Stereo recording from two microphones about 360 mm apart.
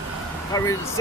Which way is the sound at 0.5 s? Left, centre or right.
Centre.